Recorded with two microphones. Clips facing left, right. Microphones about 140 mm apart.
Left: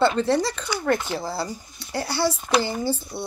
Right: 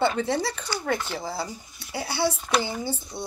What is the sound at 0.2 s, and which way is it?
Speech, 70° left (ahead or behind).